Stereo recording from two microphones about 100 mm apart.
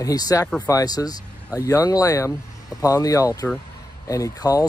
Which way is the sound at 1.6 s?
25° left (ahead or behind).